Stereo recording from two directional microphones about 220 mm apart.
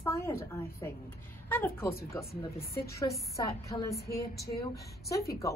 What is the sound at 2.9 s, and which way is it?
A woman's voice, 15° left (ahead or behind).